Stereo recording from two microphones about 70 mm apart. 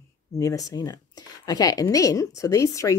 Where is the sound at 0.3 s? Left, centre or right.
Left.